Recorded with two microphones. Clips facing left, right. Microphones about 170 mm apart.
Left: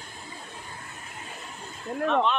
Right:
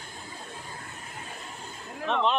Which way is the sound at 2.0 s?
45° left (ahead or behind).